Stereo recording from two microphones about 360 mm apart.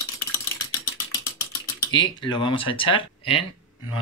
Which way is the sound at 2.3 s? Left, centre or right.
Centre.